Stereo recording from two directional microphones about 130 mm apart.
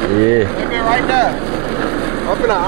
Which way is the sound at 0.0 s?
20° right (ahead or behind).